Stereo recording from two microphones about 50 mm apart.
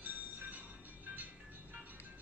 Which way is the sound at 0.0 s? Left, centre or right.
Right.